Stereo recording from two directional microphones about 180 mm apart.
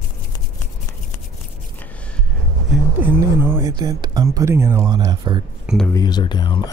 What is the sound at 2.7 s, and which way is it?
Speech, 10° right (ahead or behind).